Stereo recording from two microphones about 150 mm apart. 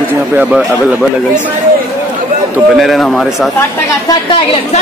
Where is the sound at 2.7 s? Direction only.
Centre (ahead or behind).